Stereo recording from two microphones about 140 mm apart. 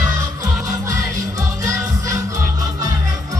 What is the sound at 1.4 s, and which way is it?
Music, 25° right (ahead or behind).